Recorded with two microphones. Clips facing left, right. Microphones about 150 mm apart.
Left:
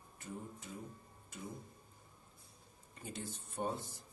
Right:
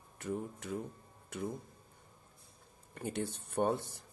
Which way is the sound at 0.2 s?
70° right (ahead or behind).